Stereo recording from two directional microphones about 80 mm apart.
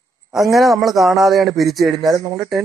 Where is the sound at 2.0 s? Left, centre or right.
Right.